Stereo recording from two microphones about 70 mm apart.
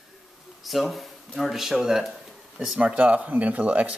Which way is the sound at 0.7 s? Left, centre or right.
Centre.